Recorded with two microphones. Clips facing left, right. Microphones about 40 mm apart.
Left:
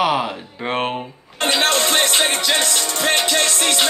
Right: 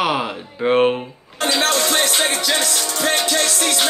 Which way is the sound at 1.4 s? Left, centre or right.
Left.